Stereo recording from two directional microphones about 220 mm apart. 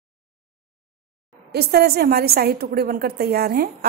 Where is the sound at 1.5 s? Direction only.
45° right (ahead or behind).